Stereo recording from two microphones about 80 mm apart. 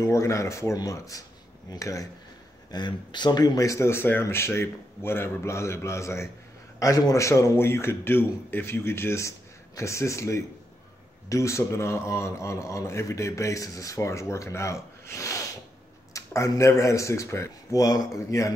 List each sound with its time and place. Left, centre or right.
0.0 s a man's voice: left
2.7 s a man's voice: left